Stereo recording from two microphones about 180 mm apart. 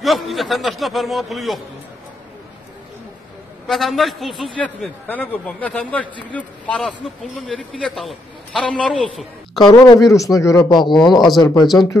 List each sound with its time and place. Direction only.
0.0 s a man's voice: centre (ahead or behind)
3.6 s a man's voice: centre (ahead or behind)
9.6 s speech: 20° left (ahead or behind)
11.1 s a man's voice: centre (ahead or behind)